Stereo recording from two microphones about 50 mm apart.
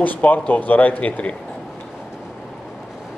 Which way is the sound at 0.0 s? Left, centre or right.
Left.